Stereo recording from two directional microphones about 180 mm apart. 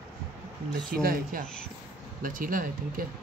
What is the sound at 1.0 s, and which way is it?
Speech, 55° right (ahead or behind).